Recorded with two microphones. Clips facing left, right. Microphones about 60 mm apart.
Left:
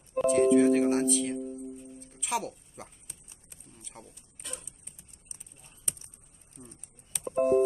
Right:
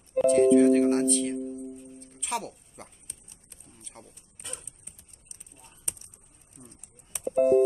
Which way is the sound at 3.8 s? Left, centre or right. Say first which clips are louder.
Even; centre.